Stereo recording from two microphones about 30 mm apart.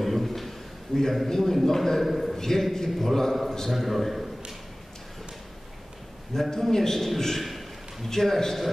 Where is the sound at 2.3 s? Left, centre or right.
Centre.